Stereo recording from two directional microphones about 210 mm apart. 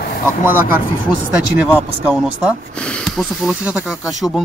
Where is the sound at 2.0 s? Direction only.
5° right (ahead or behind).